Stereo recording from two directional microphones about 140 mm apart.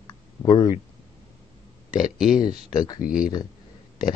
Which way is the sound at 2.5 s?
30° left (ahead or behind).